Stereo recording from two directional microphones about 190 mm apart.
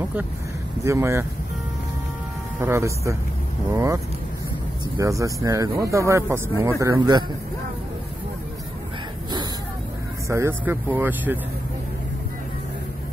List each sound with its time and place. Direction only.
0.8 s speech: 15° right (ahead or behind)
2.6 s speech: 15° right (ahead or behind)
10.2 s speech: 15° right (ahead or behind)